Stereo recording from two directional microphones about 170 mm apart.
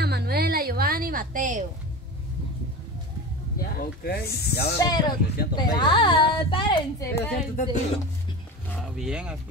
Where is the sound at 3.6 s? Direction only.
65° left (ahead or behind).